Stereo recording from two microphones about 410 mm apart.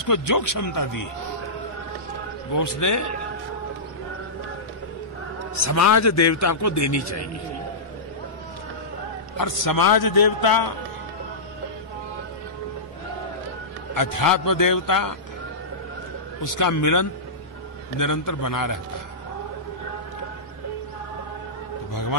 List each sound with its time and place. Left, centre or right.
0.1 s a man's voice: left
2.5 s a man's voice: left
5.6 s a man's voice: left
9.4 s a man's voice: left
13.9 s a man's voice: left
16.4 s a man's voice: left